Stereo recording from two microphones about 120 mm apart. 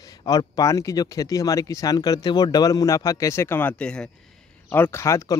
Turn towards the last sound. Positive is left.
turn(degrees=25)  # may be behind; listen again after turning